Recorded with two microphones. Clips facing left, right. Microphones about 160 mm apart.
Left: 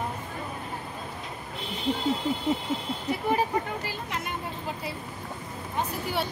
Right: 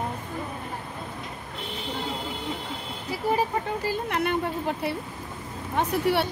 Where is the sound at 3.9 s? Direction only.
60° right (ahead or behind).